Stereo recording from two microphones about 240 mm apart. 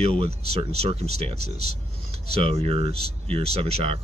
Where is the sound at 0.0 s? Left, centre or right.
Right.